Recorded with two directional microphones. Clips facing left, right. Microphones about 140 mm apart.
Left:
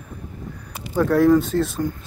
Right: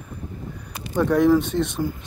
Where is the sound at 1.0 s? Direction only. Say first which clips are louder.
Left 2 dB; centre (ahead or behind).